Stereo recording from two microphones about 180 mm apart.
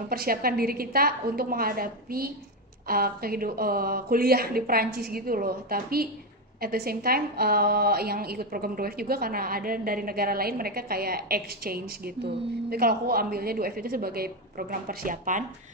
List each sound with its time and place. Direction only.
0.1 s a woman's voice: 55° right (ahead or behind)